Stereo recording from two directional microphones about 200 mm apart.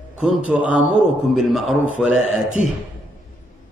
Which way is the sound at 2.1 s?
80° left.